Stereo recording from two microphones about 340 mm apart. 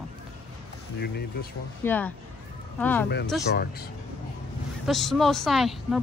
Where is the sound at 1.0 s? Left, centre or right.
Left.